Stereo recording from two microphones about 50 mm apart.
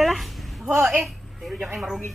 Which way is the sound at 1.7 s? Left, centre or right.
Centre.